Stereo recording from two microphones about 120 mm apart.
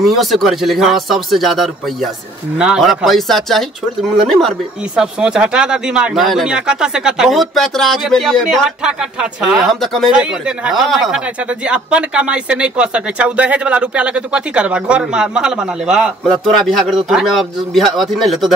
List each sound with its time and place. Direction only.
0.0 s speech: centre (ahead or behind)